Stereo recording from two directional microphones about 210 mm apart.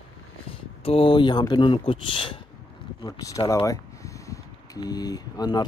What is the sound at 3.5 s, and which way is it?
Speech, 15° left (ahead or behind).